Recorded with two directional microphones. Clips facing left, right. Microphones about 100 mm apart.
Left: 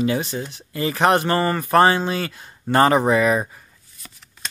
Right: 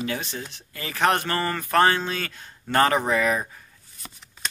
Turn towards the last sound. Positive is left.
turn(degrees=15)  # may be behind; listen again after turning